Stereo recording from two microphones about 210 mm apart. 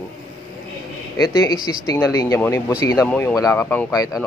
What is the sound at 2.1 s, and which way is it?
A man's voice, 15° left (ahead or behind).